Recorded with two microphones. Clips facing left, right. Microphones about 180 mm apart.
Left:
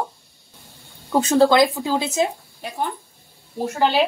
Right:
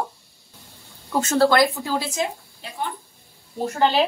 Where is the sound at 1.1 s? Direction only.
15° left (ahead or behind).